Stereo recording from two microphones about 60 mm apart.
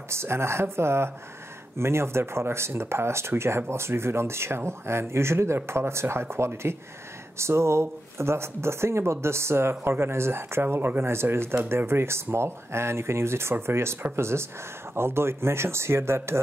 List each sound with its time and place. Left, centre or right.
0.1 s speech: right